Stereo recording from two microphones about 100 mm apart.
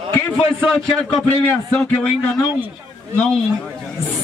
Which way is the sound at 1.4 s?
20° left (ahead or behind).